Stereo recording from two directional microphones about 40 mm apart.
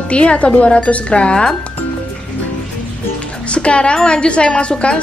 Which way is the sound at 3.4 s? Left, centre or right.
Left.